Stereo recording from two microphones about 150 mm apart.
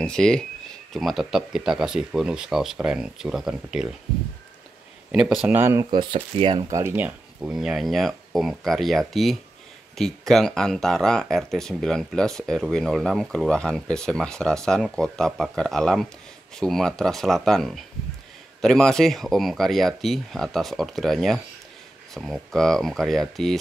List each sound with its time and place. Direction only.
0.0 s speech: 5° left (ahead or behind)
5.1 s speech: 5° right (ahead or behind)
5.6 s speech: 15° right (ahead or behind)
5.9 s speech: 35° right (ahead or behind)
6.7 s speech: 15° right (ahead or behind); by 23.6 s centre (ahead or behind)